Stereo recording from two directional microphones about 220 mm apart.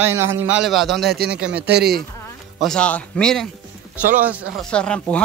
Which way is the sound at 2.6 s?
5° left (ahead or behind).